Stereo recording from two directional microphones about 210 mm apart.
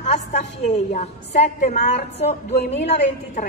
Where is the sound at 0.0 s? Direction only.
35° left (ahead or behind).